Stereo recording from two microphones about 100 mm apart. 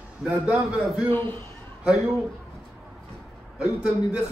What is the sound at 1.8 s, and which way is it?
Speech, 5° right (ahead or behind).